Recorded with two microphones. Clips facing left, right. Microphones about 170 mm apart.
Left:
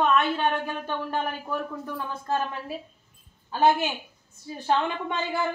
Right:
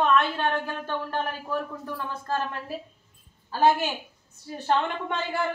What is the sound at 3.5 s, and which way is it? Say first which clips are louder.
Speech: even; centre (ahead or behind).